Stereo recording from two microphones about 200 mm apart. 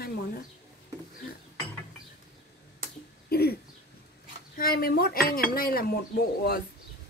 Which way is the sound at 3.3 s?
50° left (ahead or behind).